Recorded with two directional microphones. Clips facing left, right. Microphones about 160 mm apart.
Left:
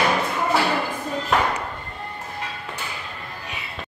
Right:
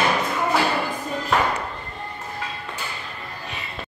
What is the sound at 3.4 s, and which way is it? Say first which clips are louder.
Music: right 1 dB; 10° left (ahead or behind).